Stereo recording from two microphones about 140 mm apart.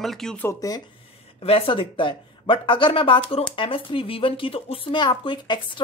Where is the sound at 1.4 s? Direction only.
40° left (ahead or behind).